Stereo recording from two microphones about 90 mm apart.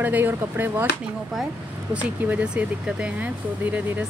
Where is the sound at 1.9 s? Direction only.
15° right (ahead or behind).